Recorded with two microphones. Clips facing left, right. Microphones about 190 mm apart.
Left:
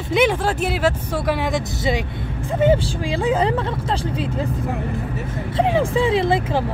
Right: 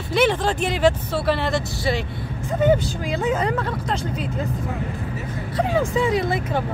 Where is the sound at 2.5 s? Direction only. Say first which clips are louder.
Left 1 dB; 25° left (ahead or behind).